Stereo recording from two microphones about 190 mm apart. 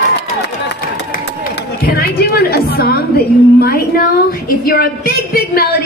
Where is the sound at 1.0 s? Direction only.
55° left (ahead or behind).